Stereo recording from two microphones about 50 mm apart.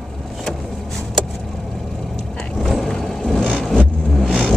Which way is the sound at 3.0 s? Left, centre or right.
Centre.